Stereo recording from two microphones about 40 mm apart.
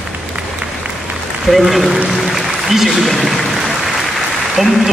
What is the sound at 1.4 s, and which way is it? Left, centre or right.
Applause, centre.